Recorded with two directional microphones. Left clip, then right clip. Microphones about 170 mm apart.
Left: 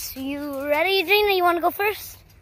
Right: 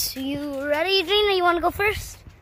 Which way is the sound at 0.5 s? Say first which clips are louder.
Left 1 dB; 10° left (ahead or behind).